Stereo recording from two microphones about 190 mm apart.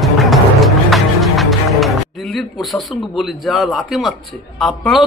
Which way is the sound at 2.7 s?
Centre (ahead or behind).